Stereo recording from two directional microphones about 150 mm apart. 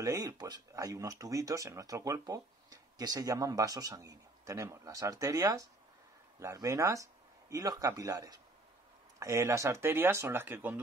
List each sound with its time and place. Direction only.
0.0 s speech: 20° right (ahead or behind)